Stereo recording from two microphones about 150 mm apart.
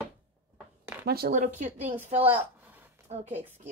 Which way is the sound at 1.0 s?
90° right.